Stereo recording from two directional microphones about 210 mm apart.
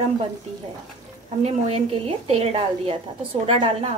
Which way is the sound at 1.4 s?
30° right (ahead or behind).